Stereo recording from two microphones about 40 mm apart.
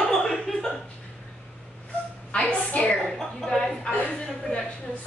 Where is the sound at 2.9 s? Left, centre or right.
Centre.